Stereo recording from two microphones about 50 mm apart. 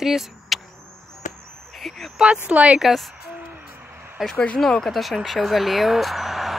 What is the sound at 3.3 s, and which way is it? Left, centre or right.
Owl, right.